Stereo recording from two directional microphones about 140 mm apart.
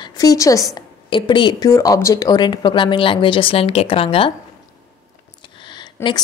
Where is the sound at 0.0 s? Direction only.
25° left (ahead or behind).